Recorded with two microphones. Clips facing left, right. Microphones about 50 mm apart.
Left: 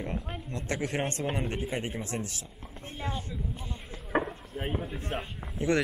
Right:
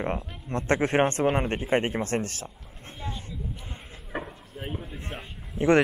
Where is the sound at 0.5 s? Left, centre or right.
Right.